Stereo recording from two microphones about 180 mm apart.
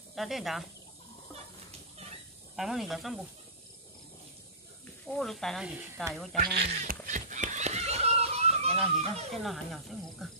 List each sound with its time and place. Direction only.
0.1 s speech: centre (ahead or behind)
2.5 s speech: centre (ahead or behind)
5.0 s speech: centre (ahead or behind)
6.4 s speech: 60° right (ahead or behind)
7.1 s goose: 45° right (ahead or behind)
8.7 s speech: centre (ahead or behind)